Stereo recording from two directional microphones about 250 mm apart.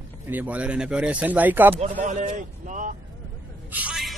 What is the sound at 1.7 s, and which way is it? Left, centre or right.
Speech, right.